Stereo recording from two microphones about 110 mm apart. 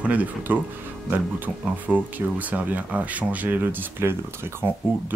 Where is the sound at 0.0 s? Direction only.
15° right (ahead or behind).